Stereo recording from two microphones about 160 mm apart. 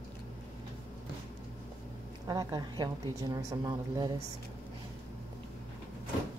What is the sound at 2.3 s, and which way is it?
A woman's voice, 25° right (ahead or behind).